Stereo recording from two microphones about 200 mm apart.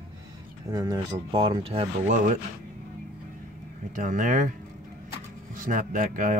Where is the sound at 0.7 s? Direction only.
15° right (ahead or behind).